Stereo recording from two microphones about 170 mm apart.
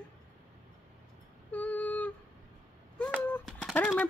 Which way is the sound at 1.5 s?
10° left (ahead or behind).